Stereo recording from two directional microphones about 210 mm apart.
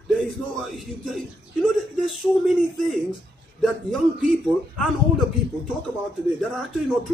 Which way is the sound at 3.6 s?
Centre (ahead or behind).